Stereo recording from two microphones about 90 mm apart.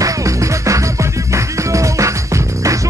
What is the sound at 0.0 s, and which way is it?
Music, 35° right (ahead or behind).